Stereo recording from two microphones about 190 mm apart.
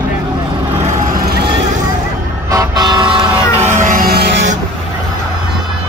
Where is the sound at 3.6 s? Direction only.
40° right (ahead or behind); by 4.5 s 65° right (ahead or behind).